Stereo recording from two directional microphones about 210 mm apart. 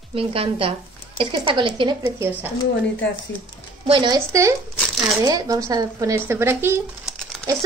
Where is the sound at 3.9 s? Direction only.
20° right (ahead or behind).